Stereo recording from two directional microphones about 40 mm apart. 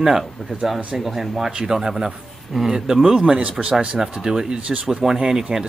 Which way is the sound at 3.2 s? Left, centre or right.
Right.